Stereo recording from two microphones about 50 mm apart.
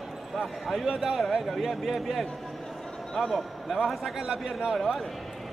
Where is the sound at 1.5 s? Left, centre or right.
Centre.